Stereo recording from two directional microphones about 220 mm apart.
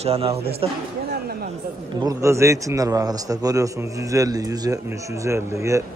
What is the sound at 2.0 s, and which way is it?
A man's voice, 15° right (ahead or behind).